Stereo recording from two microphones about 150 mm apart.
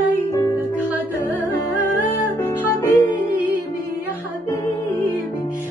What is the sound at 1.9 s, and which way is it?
Music, 15° left (ahead or behind).